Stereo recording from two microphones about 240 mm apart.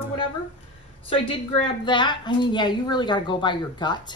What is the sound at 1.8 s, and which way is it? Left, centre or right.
A woman's voice, centre.